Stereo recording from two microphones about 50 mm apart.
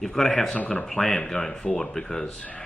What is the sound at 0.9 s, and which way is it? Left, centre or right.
Speech, centre.